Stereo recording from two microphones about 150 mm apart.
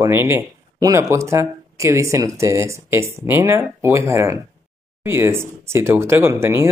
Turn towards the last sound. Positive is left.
turn(degrees=-15)  # may be behind; listen again after turning